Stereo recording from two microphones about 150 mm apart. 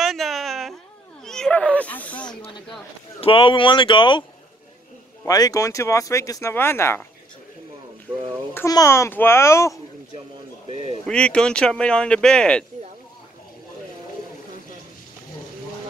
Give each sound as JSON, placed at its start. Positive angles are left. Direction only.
{"t": 0.0, "sound": "a sound", "side_deg": 0}
{"t": 1.2, "sound": "speech", "side_deg": 5}
{"t": 3.2, "sound": "speech", "side_deg": 35}
{"t": 5.2, "sound": "speech", "side_deg": 25}
{"t": 8.5, "sound": "speech", "side_deg": 20}
{"t": 11.1, "sound": "speech", "side_deg": 5}